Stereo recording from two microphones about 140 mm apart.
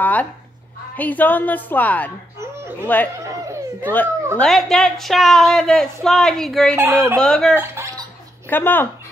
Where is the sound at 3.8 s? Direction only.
10° left (ahead or behind).